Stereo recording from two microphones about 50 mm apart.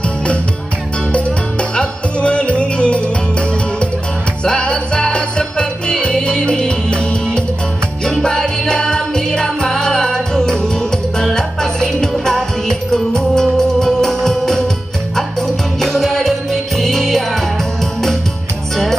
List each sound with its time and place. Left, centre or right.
1.1 s music: left
4.5 s music: centre